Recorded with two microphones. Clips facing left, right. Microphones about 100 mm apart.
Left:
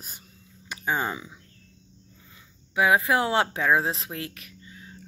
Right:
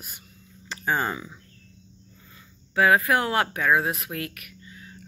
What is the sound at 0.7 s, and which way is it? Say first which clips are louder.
Speech: right 2 dB; 15° left (ahead or behind).